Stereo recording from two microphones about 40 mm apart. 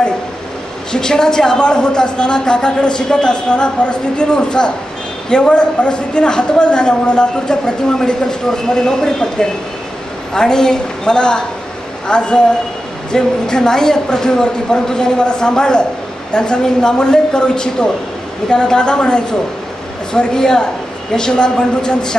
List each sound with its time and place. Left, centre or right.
0.9 s a man's voice: centre